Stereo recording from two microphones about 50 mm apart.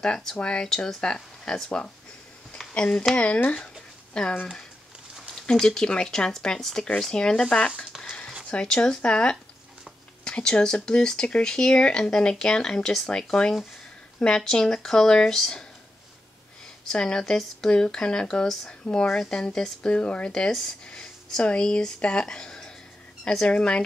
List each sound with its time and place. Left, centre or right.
0.0 s speech: centre; by 3.5 s left
4.1 s speech: centre
16.8 s speech: centre